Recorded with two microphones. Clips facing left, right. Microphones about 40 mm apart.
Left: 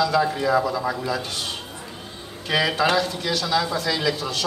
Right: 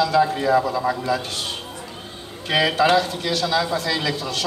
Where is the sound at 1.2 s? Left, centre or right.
Right.